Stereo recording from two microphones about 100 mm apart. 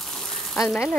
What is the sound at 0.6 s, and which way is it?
Speech, centre (ahead or behind).